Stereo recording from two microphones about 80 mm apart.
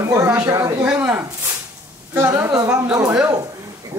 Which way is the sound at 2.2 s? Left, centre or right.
Right.